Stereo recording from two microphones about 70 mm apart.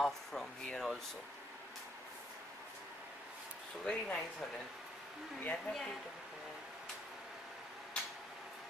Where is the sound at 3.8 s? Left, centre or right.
Centre.